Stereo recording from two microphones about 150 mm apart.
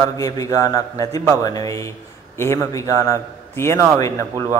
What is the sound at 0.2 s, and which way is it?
A man's voice, 25° left (ahead or behind).